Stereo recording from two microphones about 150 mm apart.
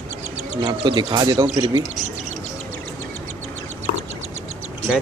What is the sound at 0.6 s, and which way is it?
Speech, 35° right (ahead or behind).